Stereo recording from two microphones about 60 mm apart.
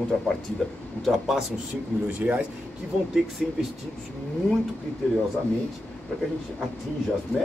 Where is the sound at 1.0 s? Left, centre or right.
Centre.